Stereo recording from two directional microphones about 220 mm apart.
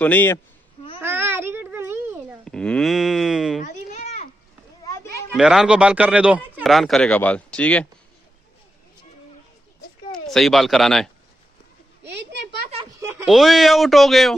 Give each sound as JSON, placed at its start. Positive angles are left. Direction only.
{"t": 0.0, "sound": "speech", "side_deg": 10}
{"t": 0.9, "sound": "a sound", "side_deg": -10}
{"t": 2.5, "sound": "speech", "side_deg": 5}
{"t": 3.6, "sound": "children playing", "side_deg": 30}
{"t": 5.3, "sound": "speech", "side_deg": 0}
{"t": 10.1, "sound": "speech", "side_deg": 0}
{"t": 12.0, "sound": "a sound", "side_deg": -50}
{"t": 13.0, "sound": "a sound", "side_deg": -10}
{"t": 13.3, "sound": "speech", "side_deg": 0}